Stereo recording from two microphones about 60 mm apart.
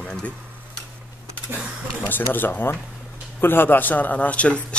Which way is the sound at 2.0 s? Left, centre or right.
Left.